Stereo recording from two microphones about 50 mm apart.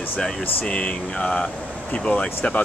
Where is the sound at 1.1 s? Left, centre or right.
Centre.